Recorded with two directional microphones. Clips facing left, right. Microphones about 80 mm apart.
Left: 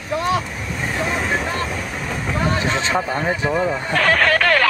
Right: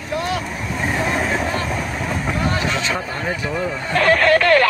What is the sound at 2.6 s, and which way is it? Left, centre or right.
Speech, left.